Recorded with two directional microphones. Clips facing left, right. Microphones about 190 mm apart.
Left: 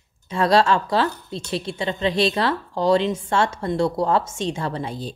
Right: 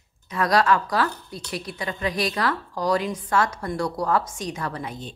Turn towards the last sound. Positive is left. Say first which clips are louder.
# left 4 dB
turn(degrees=30)  # may be behind; listen again after turning